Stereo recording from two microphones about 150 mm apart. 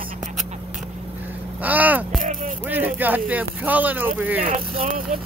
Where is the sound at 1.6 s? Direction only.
10° right (ahead or behind).